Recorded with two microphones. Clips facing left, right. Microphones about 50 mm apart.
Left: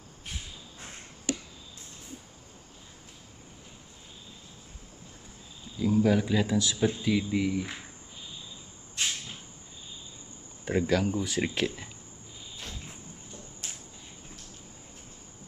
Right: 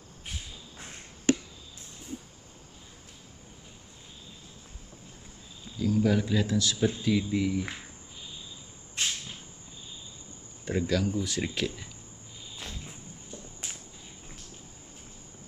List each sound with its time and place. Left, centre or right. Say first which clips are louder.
1.3 s a sound: right 8 dB; right
5.8 s speech: left 1 dB; centre
10.6 s speech: left 2 dB; centre